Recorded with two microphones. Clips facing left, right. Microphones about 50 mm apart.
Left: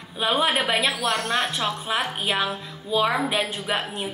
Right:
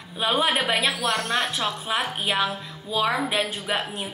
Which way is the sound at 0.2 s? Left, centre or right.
Centre.